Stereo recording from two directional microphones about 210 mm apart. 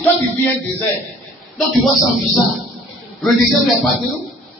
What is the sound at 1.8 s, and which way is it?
Speech, centre (ahead or behind).